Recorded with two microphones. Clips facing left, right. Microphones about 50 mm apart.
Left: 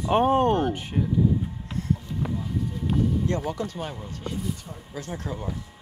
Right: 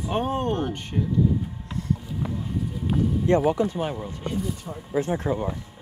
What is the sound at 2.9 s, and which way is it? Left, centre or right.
Vehicle, centre.